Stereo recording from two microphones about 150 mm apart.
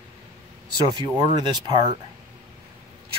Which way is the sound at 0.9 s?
25° right (ahead or behind).